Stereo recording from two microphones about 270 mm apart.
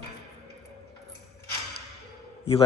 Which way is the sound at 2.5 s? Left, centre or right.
Left.